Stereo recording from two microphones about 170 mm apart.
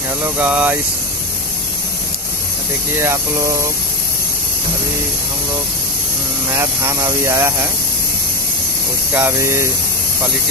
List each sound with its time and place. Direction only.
0.4 s speech: 10° right (ahead or behind)
3.0 s speech: 15° right (ahead or behind)
6.6 s speech: 15° right (ahead or behind)
9.1 s speech: 15° right (ahead or behind)